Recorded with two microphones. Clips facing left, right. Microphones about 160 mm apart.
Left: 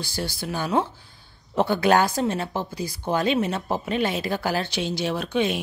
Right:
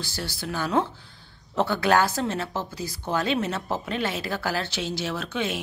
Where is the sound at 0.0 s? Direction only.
15° left (ahead or behind).